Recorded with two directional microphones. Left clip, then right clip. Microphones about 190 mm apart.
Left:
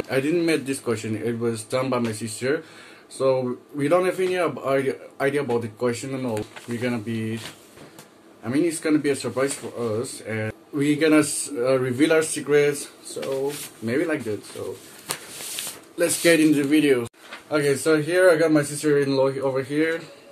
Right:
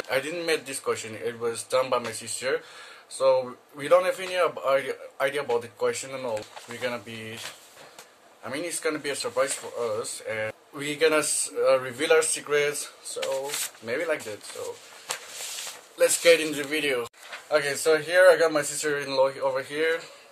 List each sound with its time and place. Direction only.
0.1 s speech: 15° right (ahead or behind)
8.5 s speech: 15° right (ahead or behind)
16.0 s speech: 15° right (ahead or behind)